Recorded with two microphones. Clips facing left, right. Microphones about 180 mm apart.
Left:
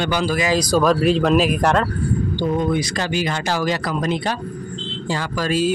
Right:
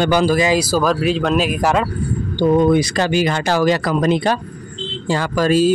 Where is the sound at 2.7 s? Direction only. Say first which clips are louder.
Right 6 dB; 65° right (ahead or behind).